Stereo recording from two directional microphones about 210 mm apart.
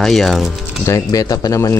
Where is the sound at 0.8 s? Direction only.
15° left (ahead or behind).